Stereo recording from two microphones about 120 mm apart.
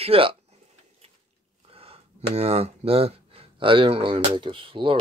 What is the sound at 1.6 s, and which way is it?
Speech, 55° right (ahead or behind).